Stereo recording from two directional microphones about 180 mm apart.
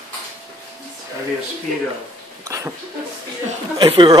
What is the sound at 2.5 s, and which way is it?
Speech, 15° right (ahead or behind).